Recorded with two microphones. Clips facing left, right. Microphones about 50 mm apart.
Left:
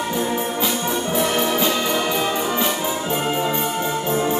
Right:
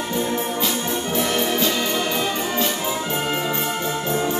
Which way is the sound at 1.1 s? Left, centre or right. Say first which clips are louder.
Left 1 dB; centre.